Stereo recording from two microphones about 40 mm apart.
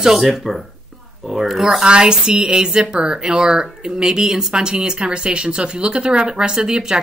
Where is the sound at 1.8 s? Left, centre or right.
Right.